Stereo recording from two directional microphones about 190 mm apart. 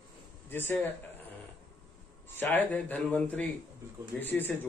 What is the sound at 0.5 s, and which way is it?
Speech, 10° left (ahead or behind).